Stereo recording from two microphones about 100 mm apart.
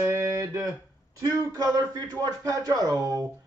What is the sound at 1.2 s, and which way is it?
Speech, 40° right (ahead or behind).